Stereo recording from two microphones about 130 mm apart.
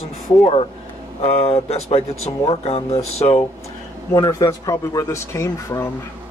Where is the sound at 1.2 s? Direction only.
55° left (ahead or behind).